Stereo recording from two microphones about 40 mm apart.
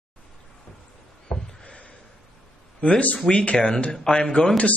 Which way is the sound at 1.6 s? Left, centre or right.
Left.